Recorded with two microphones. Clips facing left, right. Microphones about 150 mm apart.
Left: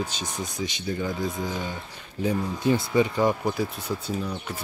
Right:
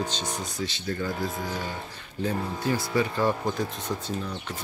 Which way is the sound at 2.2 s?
15° left (ahead or behind).